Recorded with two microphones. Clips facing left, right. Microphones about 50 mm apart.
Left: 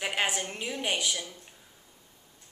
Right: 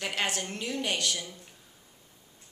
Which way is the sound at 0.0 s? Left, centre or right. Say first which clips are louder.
Left 2 dB; centre.